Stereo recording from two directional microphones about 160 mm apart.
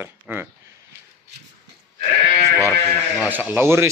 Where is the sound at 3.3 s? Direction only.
10° right (ahead or behind).